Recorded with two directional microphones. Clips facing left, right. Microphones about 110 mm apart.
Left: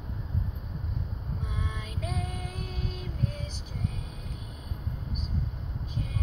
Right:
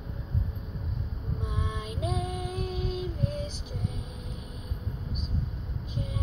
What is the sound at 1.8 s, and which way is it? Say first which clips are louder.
Female singing: right 6 dB; 20° right (ahead or behind).